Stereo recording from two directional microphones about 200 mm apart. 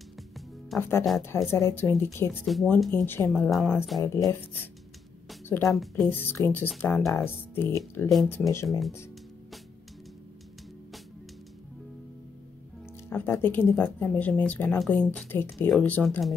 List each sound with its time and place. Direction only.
0.7 s speech: 10° left (ahead or behind)
2.4 s speech: centre (ahead or behind)
2.9 s speech: 10° left (ahead or behind)
3.3 s speech: centre (ahead or behind)
4.0 s speech: 15° left (ahead or behind)
5.5 s speech: 15° left (ahead or behind)
8.6 s speech: centre (ahead or behind)
13.1 s speech: 10° left (ahead or behind)